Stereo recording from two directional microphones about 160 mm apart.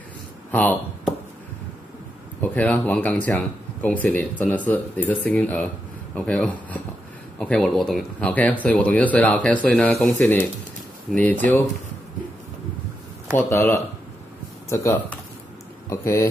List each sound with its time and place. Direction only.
0.5 s speech: 10° left (ahead or behind)
2.4 s speech: 10° left (ahead or behind)
13.4 s speech: 15° left (ahead or behind)